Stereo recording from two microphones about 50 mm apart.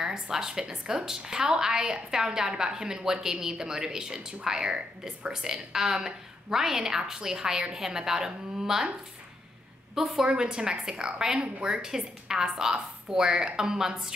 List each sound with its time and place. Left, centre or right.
0.0 s a woman's voice: centre
9.9 s a woman's voice: centre